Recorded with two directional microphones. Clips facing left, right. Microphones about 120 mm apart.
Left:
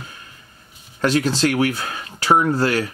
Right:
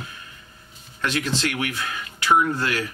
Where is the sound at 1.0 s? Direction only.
35° left (ahead or behind).